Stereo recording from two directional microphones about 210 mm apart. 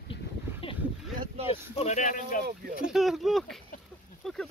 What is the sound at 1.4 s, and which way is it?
Speech, 30° left (ahead or behind).